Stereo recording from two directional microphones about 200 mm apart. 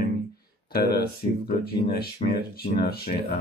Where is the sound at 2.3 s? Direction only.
50° left (ahead or behind).